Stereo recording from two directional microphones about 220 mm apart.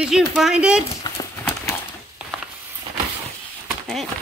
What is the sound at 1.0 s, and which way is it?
Horse, 20° left (ahead or behind).